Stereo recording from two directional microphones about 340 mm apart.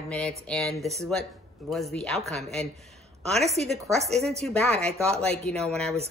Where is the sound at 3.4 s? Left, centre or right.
Centre.